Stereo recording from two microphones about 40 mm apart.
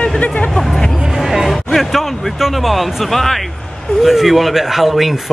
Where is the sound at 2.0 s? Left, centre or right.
Centre.